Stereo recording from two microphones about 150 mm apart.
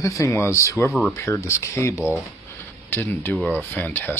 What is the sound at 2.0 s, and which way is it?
Speech, 10° right (ahead or behind).